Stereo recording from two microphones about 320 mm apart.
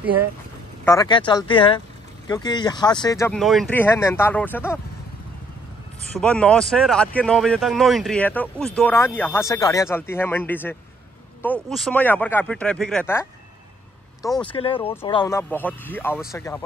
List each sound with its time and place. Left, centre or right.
0.8 s speech: centre
6.1 s speech: centre
14.4 s speech: centre